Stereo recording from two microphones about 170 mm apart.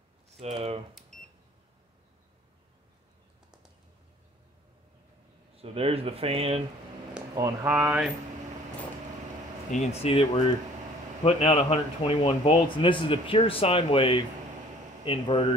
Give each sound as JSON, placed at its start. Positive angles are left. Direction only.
{"t": 0.4, "sound": "speech", "side_deg": -35}
{"t": 5.6, "sound": "speech", "side_deg": -35}
{"t": 7.3, "sound": "speech", "side_deg": -15}
{"t": 9.7, "sound": "speech", "side_deg": 40}